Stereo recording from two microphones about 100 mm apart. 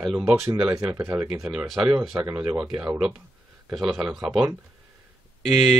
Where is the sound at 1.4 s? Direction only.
5° right (ahead or behind).